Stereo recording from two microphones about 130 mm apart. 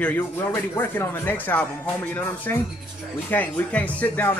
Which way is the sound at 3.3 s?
10° left (ahead or behind).